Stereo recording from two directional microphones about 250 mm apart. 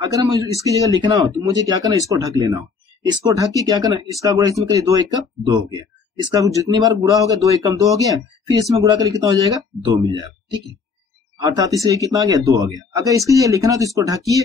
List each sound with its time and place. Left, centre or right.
0.0 s speech: centre